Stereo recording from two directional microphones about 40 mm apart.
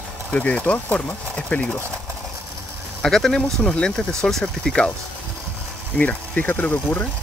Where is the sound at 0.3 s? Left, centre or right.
Left.